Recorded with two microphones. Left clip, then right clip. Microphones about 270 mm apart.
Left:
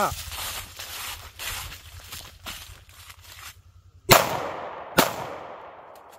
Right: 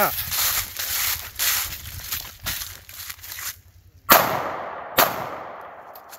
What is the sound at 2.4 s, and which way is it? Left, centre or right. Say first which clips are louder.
Crushing: right 7 dB; right.